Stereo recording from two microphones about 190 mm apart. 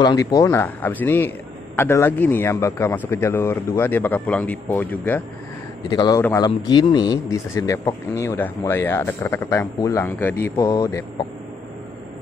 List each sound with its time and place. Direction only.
0.0 s speech: 20° left (ahead or behind)
5.9 s a man's voice: 20° left (ahead or behind)